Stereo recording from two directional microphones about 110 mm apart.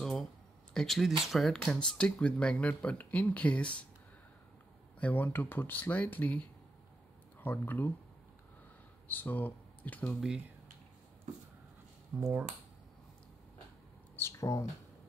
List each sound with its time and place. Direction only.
0.0 s a sound: centre (ahead or behind)
0.7 s speech: centre (ahead or behind)
5.0 s speech: 15° left (ahead or behind)
9.0 s speech: 15° left (ahead or behind)
12.1 s speech: 20° right (ahead or behind)
14.1 s speech: 25° left (ahead or behind)